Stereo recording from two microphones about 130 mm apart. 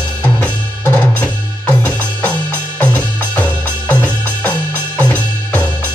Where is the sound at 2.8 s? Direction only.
10° left (ahead or behind).